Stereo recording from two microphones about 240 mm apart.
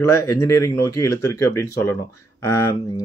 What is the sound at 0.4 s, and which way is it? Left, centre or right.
Speech, centre.